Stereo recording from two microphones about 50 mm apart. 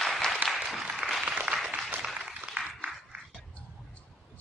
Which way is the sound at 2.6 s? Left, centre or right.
Right.